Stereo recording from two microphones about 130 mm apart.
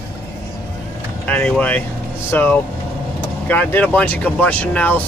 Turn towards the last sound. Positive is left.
turn(degrees=15)  # may be behind; listen again after turning